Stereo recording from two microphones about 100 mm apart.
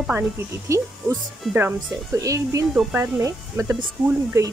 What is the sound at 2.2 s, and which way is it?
Speech, 35° right (ahead or behind).